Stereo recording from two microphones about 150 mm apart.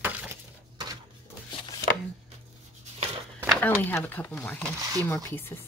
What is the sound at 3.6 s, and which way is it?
Speech, 10° left (ahead or behind).